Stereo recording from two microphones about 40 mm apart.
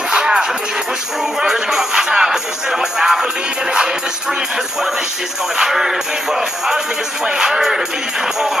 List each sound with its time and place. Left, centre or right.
0.1 s music: right
5.6 s music: centre